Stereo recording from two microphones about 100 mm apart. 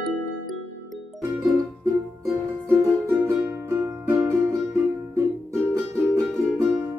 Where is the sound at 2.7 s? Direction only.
30° right (ahead or behind).